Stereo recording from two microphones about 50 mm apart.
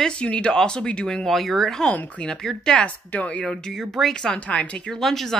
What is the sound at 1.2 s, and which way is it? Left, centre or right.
Speech, centre.